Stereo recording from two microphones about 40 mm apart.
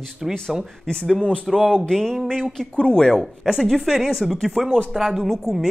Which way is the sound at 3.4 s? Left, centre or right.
Centre.